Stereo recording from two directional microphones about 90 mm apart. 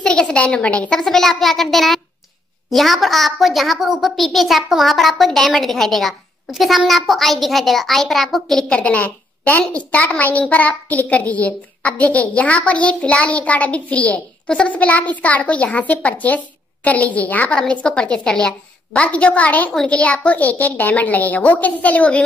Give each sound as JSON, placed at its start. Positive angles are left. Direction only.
{"t": 0.0, "sound": "a woman's voice", "side_deg": 10}